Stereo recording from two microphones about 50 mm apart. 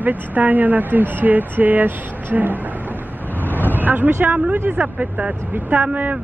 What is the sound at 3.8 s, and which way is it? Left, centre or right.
Speech, right.